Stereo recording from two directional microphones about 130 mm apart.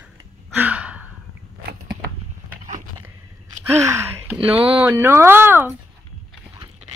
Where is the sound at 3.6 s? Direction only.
20° right (ahead or behind).